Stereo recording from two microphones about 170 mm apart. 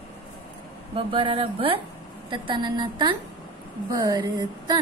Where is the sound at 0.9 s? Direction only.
30° right (ahead or behind).